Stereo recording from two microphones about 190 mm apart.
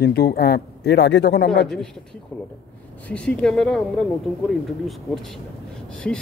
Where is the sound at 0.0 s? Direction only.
55° left (ahead or behind).